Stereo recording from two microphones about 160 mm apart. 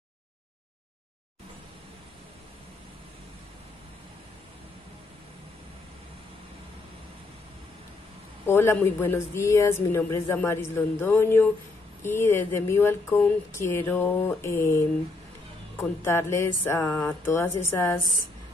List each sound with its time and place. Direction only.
8.5 s speech: 15° left (ahead or behind)